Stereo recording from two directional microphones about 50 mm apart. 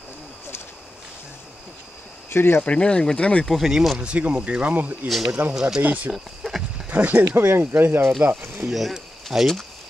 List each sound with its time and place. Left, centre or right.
2.2 s speech: left
2.6 s speech: left
3.4 s speech: centre
4.0 s speech: right
5.0 s speech: centre
5.8 s speech: right
6.1 s a sound: centre
6.9 s speech: right
7.2 s speech: right
8.6 s speech: centre